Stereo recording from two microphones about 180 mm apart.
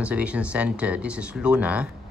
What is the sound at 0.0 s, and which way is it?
Speech, 5° right (ahead or behind).